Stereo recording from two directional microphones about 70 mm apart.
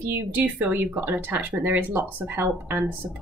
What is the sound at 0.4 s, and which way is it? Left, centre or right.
Speech, right.